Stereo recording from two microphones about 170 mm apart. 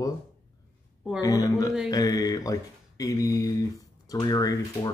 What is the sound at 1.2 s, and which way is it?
Speech, 20° left (ahead or behind).